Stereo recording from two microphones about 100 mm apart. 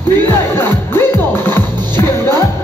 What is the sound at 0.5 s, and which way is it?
Music, 25° left (ahead or behind).